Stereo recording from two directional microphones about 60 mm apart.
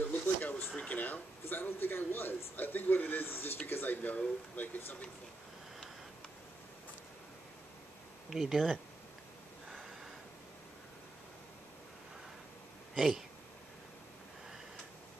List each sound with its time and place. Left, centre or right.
0.1 s a sound: left
1.4 s a man's voice: left
8.3 s speech: centre
12.9 s speech: centre